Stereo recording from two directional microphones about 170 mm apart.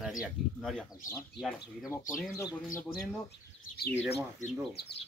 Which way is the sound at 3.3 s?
65° left (ahead or behind).